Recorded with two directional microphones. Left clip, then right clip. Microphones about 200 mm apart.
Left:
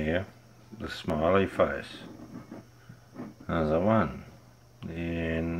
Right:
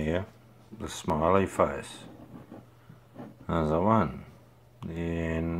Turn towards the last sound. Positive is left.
turn(degrees=-15)  # may be behind; listen again after turning